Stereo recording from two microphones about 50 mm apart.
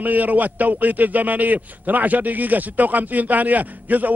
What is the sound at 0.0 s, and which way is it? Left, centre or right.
A man's voice, right.